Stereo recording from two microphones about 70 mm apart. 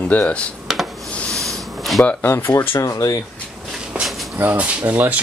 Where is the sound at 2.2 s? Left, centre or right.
Left.